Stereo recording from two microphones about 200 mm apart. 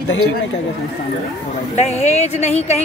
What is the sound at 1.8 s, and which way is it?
A woman's voice, 35° left (ahead or behind).